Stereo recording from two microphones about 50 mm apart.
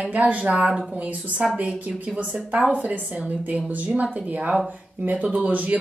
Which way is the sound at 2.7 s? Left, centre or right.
Right.